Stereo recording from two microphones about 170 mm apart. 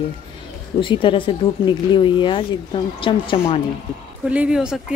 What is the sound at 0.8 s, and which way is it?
Speech, 30° left (ahead or behind).